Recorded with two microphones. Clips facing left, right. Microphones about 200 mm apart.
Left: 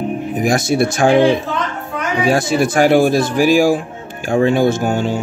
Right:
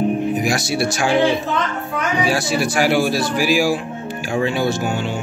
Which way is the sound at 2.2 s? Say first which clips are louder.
Left 8 dB; 50° left (ahead or behind).